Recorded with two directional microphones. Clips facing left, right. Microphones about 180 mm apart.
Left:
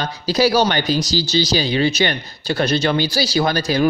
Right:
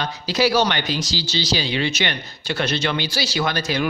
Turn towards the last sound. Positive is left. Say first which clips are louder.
# left 5 dB
turn(degrees=35)  # may be behind; listen again after turning